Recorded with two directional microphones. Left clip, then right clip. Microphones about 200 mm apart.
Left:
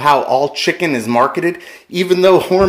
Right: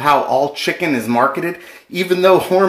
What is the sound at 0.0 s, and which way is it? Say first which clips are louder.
Speech: left 2 dB; 35° left (ahead or behind).